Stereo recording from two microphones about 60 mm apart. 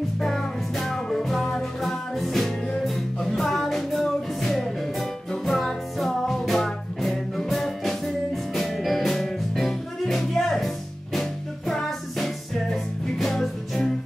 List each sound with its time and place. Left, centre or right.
0.2 s music: centre